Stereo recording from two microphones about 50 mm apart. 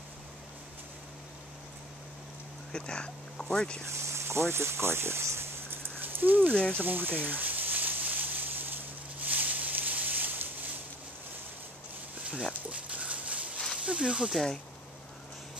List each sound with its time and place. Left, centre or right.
2.7 s speech: centre
4.0 s a sound: right
12.2 s dog: right
13.8 s speech: right
14.3 s speech: centre